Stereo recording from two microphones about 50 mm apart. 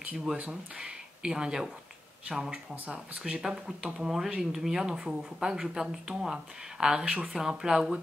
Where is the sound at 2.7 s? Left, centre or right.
Right.